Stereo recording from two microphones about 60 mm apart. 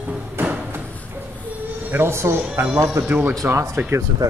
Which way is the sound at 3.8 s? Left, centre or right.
Right.